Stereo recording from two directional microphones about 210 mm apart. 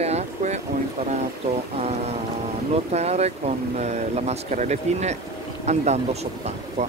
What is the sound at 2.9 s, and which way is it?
Speech, 30° right (ahead or behind).